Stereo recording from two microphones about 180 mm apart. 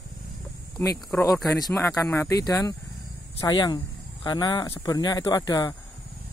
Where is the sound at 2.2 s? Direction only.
20° left (ahead or behind).